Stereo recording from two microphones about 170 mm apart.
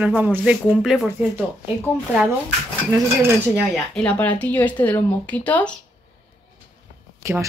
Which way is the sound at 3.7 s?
5° left (ahead or behind).